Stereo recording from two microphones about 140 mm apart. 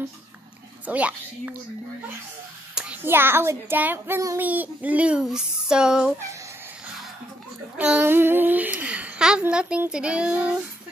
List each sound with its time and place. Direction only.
0.8 s speech: 10° right (ahead or behind)
2.7 s hands: 5° right (ahead or behind)
3.0 s speech: 15° right (ahead or behind)
7.7 s speech: 10° right (ahead or behind)